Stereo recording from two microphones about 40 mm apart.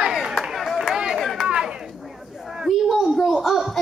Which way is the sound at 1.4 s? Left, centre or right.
Right.